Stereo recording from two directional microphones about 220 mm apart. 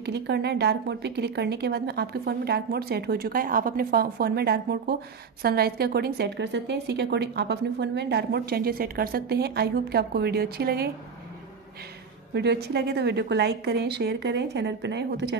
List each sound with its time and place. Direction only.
0.0 s a woman's voice: 50° right (ahead or behind)
12.4 s a woman's voice: 50° right (ahead or behind)